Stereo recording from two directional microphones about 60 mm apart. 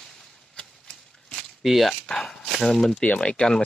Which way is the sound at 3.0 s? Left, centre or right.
Centre.